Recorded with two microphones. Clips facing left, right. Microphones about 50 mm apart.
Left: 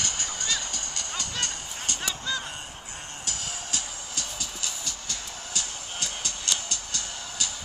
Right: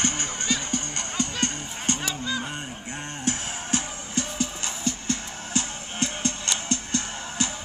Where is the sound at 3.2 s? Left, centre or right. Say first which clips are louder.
Right 8 dB; right.